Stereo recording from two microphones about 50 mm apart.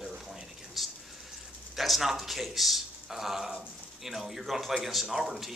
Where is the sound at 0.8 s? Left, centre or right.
Centre.